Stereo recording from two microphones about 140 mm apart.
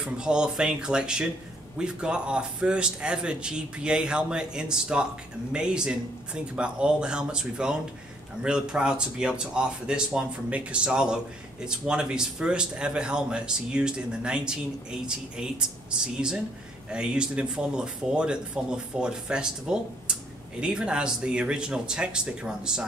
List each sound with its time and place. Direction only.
0.0 s a man's voice: 5° right (ahead or behind)